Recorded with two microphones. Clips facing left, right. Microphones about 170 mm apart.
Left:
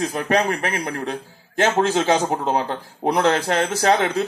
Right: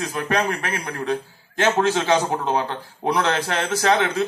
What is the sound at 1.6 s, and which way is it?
A man's voice, 45° left (ahead or behind).